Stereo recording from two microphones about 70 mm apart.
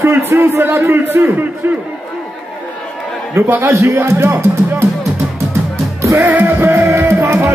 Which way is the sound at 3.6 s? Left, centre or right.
Right.